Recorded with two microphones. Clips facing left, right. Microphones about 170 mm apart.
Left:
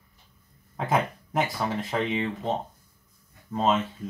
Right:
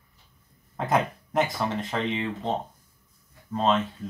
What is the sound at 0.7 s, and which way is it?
Speech, centre (ahead or behind).